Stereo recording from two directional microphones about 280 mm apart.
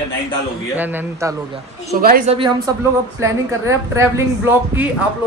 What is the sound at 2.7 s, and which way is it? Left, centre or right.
A man's voice, centre.